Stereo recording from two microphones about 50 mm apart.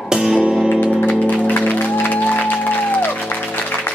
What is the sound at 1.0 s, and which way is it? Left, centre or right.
Music, left.